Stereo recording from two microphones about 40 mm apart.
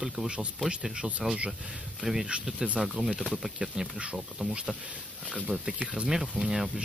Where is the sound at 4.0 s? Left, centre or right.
Right.